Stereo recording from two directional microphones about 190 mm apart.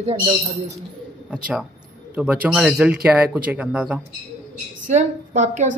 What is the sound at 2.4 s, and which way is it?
Speech, 5° right (ahead or behind).